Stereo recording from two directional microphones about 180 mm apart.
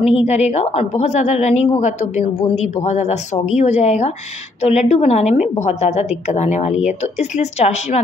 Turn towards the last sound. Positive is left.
turn(degrees=40)  # may be behind; listen again after turning